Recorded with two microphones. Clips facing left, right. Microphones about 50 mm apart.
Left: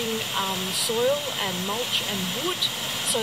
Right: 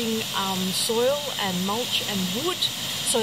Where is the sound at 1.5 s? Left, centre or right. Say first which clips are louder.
Right 1 dB; left.